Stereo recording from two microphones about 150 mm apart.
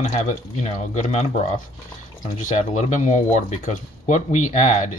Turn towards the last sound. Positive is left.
turn(degrees=50)  # may be behind; listen again after turning